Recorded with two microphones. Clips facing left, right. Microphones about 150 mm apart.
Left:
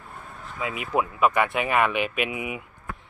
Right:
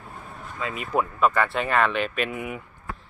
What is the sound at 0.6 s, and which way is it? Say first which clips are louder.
Speech: even; 10° left (ahead or behind).